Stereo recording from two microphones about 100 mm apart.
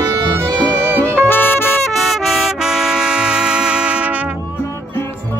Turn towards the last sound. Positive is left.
turn(degrees=-15)  # may be behind; listen again after turning